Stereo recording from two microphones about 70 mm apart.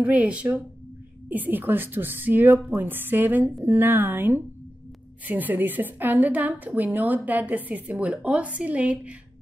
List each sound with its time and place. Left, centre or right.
0.0 s a woman's voice: centre